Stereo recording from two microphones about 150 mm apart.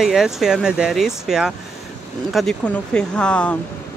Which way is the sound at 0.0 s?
5° right (ahead or behind).